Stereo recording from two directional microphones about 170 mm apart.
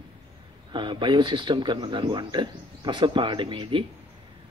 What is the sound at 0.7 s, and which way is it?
Speech, 25° right (ahead or behind).